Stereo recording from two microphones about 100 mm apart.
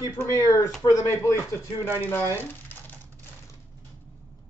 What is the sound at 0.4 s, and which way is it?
Speech, 35° left (ahead or behind).